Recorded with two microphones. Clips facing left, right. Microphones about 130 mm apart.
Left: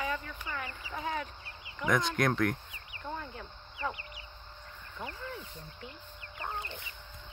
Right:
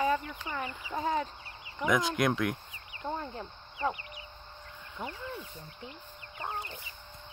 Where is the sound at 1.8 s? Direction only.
5° right (ahead or behind).